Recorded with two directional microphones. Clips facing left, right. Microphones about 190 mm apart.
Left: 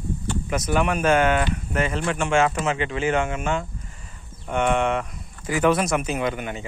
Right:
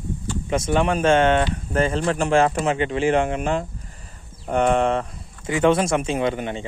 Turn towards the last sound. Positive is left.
turn(degrees=-30)  # may be behind; listen again after turning